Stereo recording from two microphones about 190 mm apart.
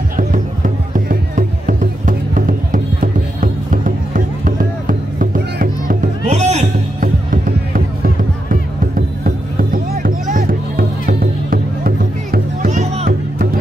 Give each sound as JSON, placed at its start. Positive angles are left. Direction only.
{"t": 0.2, "sound": "music", "side_deg": -45}